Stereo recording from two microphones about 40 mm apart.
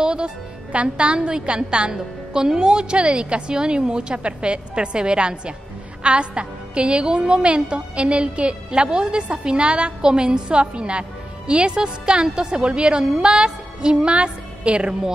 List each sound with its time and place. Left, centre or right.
0.0 s music: right
0.7 s a woman's voice: right